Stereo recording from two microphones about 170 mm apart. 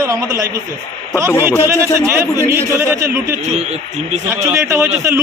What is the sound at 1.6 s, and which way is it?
Speech, 15° right (ahead or behind).